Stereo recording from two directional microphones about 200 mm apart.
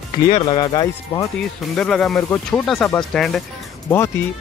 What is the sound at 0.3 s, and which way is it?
Speech, 25° left (ahead or behind).